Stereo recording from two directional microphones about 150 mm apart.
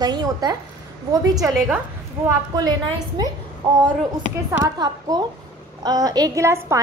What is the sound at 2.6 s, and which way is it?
Speech, 30° right (ahead or behind).